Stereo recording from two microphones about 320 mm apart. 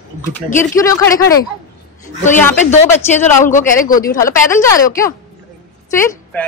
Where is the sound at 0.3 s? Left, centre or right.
Centre.